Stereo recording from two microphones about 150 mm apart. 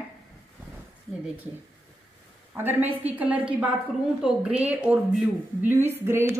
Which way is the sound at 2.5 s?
15° right (ahead or behind).